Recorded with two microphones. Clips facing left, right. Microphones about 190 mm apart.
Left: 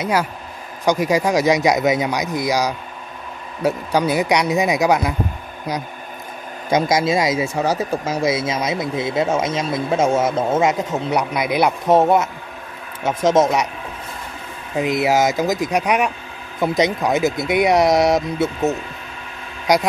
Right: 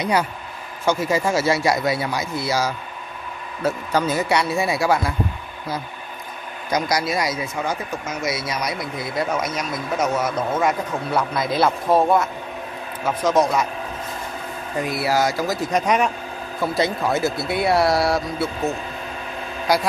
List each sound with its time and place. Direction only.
0.0 s speech: 5° left (ahead or behind); by 13.7 s 20° left (ahead or behind)
14.8 s speech: 20° left (ahead or behind)